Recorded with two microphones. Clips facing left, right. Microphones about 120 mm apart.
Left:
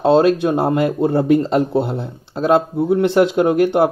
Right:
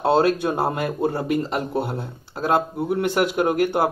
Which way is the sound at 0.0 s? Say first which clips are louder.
Left 5 dB; 20° left (ahead or behind).